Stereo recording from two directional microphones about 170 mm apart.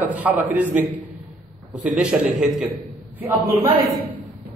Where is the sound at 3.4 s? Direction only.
60° right (ahead or behind).